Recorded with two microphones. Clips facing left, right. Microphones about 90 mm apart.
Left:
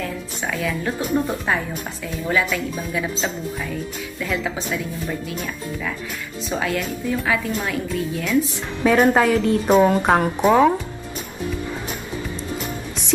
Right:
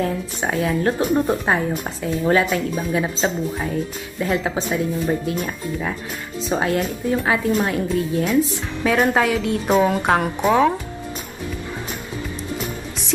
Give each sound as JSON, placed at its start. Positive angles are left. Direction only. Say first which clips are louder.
{"t": 0.0, "sound": "speech", "louder": "right 5 dB", "side_deg": -35}
{"t": 8.8, "sound": "speech", "louder": "left 2 dB", "side_deg": 0}